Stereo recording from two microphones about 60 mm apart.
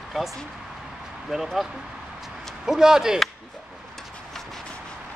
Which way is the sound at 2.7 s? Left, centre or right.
Centre.